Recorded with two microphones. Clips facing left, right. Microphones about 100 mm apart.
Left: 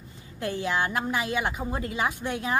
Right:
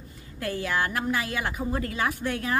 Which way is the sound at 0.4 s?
20° left (ahead or behind).